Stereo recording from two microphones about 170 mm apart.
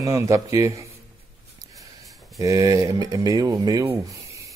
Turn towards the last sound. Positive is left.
turn(degrees=-20)  # may be behind; listen again after turning